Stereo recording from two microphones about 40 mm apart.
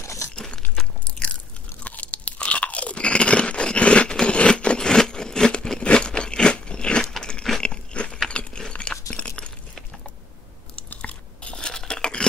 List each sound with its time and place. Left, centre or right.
0.4 s a sound: left
1.0 s biting: left
1.9 s crunch: left
4.4 s a sound: left
4.7 s wood: centre
5.9 s biting: left
7.6 s crunch: left
8.3 s a sound: left
11.0 s crunch: left